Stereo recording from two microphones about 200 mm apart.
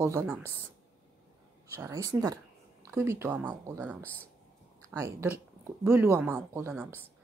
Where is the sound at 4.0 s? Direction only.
10° left (ahead or behind).